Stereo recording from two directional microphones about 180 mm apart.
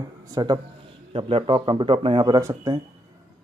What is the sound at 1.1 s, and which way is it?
Speech, 30° right (ahead or behind).